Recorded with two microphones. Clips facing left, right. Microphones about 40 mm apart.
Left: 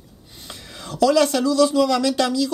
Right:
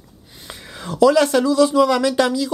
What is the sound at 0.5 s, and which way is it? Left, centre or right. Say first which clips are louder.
Speech: right 4 dB; right.